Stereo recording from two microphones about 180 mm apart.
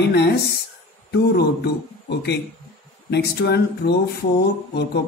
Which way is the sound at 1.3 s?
65° left (ahead or behind).